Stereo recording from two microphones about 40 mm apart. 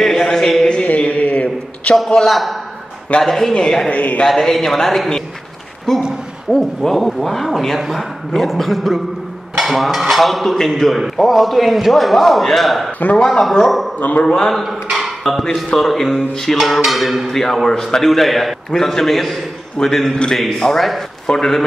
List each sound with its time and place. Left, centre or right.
0.0 s a sound: centre
0.8 s a sound: left
2.2 s a man's voice: centre
3.9 s a man's voice: left
4.3 s a man's voice: centre
13.1 s a man's voice: centre
13.7 s a man's voice: centre
13.9 s a man's voice: left
14.2 s a man's voice: centre
14.5 s speech: centre
15.4 s a man's voice: centre